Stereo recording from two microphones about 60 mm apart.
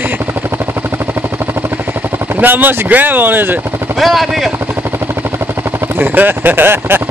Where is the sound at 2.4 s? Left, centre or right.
Right.